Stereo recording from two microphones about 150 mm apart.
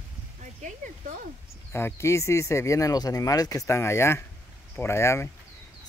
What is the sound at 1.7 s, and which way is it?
Speech, 15° left (ahead or behind).